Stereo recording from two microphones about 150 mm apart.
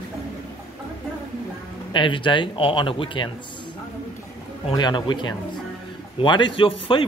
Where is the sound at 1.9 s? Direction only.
35° left (ahead or behind).